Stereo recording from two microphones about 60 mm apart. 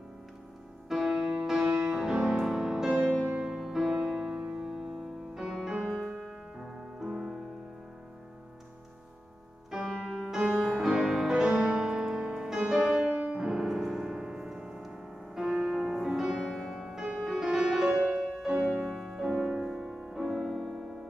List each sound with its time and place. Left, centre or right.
0.8 s music: centre
9.7 s music: centre
13.5 s music: centre
19.7 s music: centre